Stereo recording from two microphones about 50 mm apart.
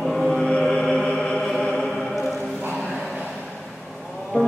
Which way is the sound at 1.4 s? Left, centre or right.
Centre.